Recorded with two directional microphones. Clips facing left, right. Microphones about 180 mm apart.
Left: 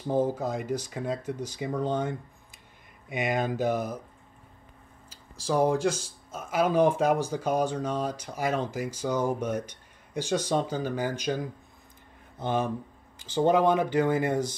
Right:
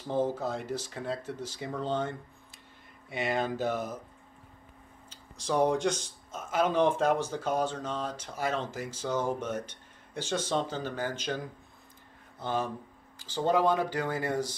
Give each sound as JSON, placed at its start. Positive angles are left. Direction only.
{"t": 0.1, "sound": "speech", "side_deg": 15}
{"t": 5.4, "sound": "speech", "side_deg": 5}